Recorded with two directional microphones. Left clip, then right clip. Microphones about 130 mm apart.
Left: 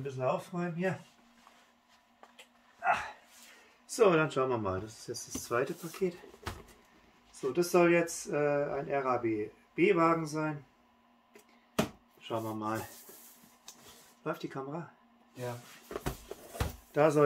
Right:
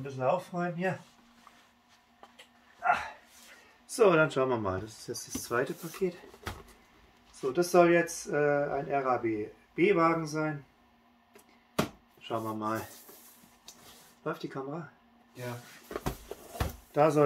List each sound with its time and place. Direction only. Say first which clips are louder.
0.2 s speech: right 4 dB; 10° left (ahead or behind)
3.8 s speech: right 2 dB; 5° right (ahead or behind)
11.7 s a sound: right 1 dB; centre (ahead or behind)
14.2 s speech: right 1 dB; 5° left (ahead or behind)
15.3 s a sound: even; centre (ahead or behind)
16.9 s speech: right 1 dB; 5° right (ahead or behind)